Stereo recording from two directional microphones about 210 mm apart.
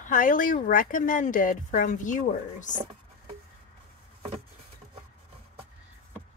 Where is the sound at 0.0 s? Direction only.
40° left (ahead or behind).